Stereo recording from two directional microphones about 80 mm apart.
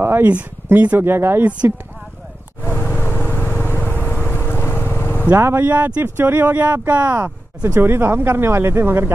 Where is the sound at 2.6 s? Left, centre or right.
Left.